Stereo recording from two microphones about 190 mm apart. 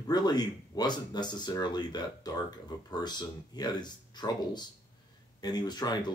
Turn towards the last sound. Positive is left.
turn(degrees=20)  # may be behind; listen again after turning